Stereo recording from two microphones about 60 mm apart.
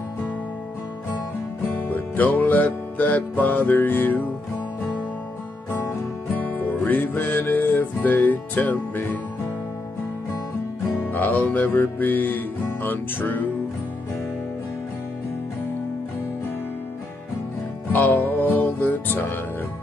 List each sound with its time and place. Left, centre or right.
1.7 s music: left
6.3 s music: left
11.1 s music: left
17.8 s music: left